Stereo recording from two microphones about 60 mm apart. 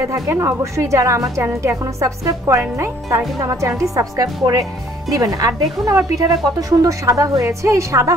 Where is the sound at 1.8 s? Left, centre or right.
Right.